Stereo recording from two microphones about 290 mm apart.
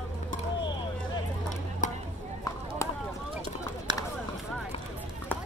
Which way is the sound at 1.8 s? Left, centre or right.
Left.